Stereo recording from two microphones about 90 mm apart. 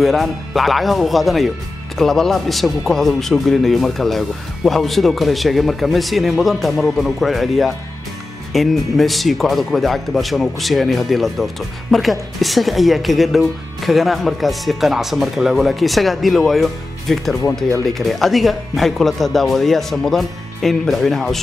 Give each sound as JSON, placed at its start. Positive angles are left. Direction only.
{"t": 0.0, "sound": "speech", "side_deg": 0}